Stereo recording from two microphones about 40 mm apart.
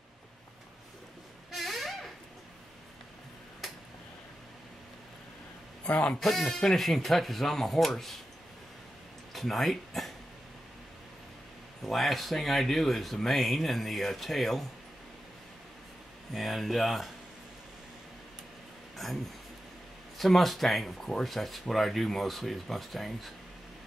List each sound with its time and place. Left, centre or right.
1.5 s a sound: centre
5.9 s speech: left
6.1 s speech: centre
9.3 s speech: centre
11.8 s speech: centre
16.3 s speech: centre
19.0 s speech: centre